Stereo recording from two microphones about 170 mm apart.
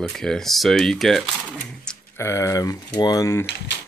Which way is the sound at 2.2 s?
15° left (ahead or behind).